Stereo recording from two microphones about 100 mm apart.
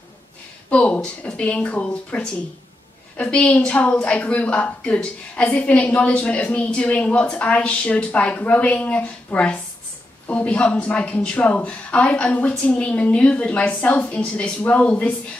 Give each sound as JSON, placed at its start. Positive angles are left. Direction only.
{"t": 0.7, "sound": "a woman's voice", "side_deg": 15}